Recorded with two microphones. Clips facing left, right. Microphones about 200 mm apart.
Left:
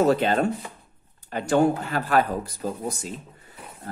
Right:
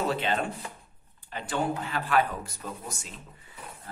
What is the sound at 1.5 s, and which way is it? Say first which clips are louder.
Speech: left 9 dB; 45° left (ahead or behind).